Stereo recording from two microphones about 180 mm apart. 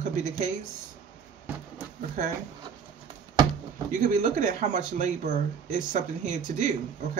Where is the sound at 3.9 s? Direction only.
45° right (ahead or behind).